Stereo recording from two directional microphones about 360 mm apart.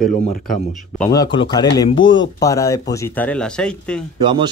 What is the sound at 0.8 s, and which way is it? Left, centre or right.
Speech, centre.